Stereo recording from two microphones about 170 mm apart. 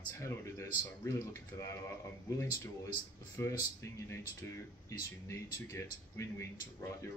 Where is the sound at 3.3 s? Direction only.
15° left (ahead or behind).